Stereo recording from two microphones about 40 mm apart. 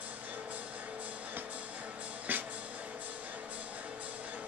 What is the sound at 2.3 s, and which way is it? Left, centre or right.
Music, right.